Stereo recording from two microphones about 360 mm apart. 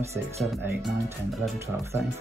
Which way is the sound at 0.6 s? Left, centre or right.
Centre.